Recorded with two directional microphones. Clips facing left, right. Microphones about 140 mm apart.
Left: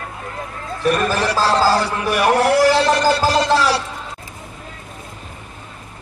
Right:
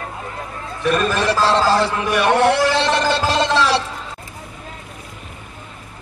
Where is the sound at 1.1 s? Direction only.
25° right (ahead or behind).